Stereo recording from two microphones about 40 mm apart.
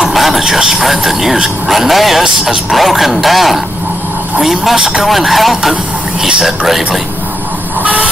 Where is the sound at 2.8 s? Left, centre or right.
Centre.